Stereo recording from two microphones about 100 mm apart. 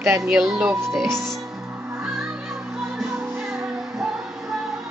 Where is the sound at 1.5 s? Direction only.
15° right (ahead or behind).